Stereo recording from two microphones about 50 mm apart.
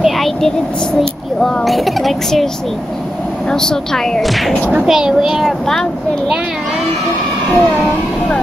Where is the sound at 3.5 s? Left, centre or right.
Centre.